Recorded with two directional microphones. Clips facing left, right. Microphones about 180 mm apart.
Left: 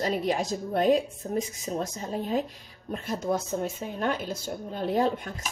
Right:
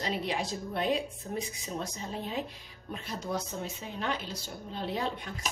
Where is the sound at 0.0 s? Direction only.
45° left (ahead or behind).